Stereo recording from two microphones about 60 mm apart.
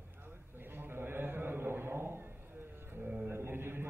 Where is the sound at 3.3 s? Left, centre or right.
Right.